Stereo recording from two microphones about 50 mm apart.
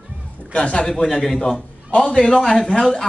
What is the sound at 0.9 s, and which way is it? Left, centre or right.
Speech, centre.